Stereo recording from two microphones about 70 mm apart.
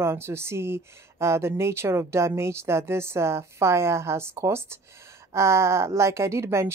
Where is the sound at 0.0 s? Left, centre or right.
Right.